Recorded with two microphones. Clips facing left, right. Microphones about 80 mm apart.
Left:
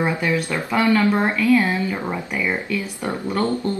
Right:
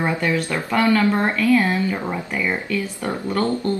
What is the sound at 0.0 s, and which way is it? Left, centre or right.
Speech, centre.